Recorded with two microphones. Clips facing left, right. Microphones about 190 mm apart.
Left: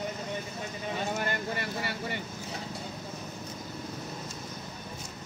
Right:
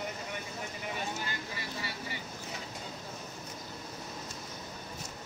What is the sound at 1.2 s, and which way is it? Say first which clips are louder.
Vehicle: left 8 dB; 60° left (ahead or behind).